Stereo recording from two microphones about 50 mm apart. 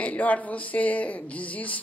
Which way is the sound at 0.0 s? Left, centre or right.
Left.